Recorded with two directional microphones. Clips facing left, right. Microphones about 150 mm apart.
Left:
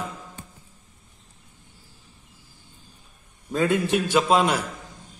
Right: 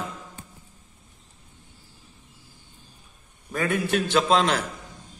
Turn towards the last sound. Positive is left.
turn(degrees=10)  # may be behind; listen again after turning